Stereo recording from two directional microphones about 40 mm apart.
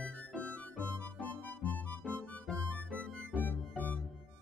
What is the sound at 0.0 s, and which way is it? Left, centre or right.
Music, left.